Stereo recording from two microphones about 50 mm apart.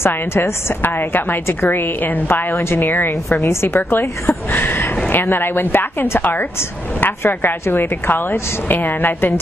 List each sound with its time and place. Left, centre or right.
0.0 s a woman's voice: left
0.8 s speech: left
2.5 s a woman's voice: left
3.6 s a woman's voice: left